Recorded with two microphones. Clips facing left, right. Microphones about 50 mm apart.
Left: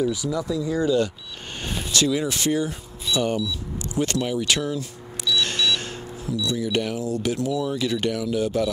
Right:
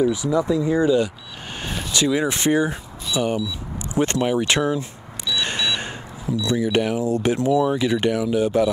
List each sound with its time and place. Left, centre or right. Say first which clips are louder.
0.0 s speech: right 5 dB; right
1.6 s speech: right 1 dB; centre
3.2 s vehicle: right 2 dB; centre
7.2 s speech: right 6 dB; right